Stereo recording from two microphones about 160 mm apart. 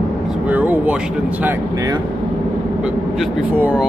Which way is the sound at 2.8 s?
5° right (ahead or behind).